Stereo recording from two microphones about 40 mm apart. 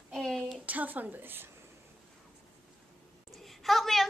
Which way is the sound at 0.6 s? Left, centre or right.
Right.